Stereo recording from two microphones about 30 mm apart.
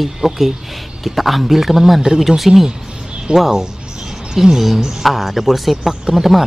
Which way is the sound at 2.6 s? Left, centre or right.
Right.